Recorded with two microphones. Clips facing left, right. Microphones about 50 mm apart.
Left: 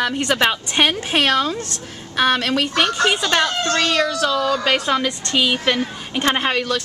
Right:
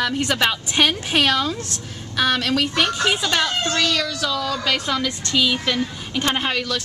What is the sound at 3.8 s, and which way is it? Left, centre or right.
A woman's voice, left.